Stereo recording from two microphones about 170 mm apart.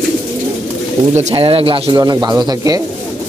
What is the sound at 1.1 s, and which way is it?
Speech, 40° right (ahead or behind).